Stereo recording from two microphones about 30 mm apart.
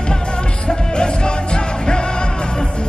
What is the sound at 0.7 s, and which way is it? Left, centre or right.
Music, left.